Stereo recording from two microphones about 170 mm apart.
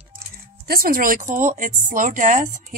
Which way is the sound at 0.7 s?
55° right (ahead or behind).